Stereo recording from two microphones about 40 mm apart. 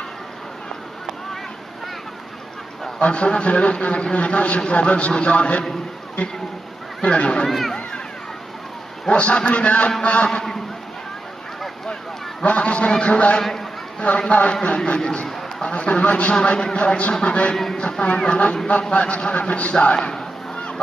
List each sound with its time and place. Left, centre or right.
3.0 s a man's voice: left
7.4 s speech: centre
9.1 s a man's voice: left
11.9 s a man's voice: left
19.8 s a man's voice: left